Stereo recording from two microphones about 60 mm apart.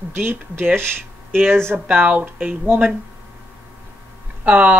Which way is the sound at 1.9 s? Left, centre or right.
Right.